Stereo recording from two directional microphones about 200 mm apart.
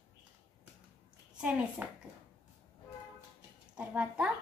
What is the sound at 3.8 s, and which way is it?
Speech, 5° right (ahead or behind).